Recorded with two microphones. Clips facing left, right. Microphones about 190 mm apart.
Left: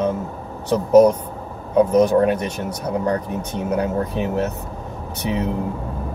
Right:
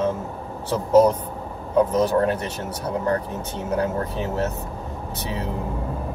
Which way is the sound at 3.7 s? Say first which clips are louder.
Left 2 dB; 15° left (ahead or behind).